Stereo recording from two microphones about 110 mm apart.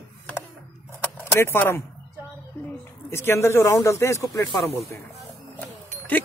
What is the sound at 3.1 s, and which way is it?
Speech, 25° left (ahead or behind).